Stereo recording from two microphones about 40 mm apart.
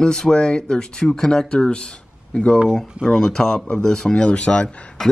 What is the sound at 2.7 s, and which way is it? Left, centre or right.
Speech, centre.